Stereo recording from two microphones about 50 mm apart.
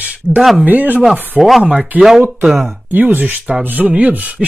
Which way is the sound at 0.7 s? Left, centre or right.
Right.